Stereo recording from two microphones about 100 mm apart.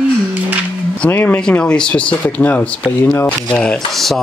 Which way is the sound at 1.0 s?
15° left (ahead or behind).